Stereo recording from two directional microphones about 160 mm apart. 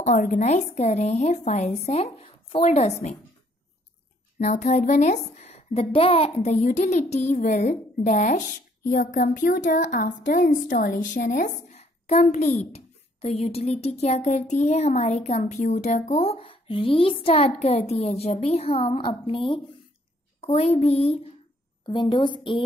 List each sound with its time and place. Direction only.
0.0 s a woman's voice: 55° left (ahead or behind)
4.4 s a woman's voice: 45° left (ahead or behind)
21.8 s a woman's voice: 30° left (ahead or behind)